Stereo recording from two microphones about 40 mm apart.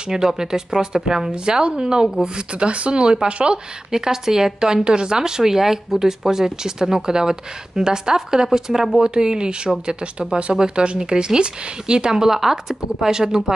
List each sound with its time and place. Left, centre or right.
0.1 s speech: centre
3.9 s speech: centre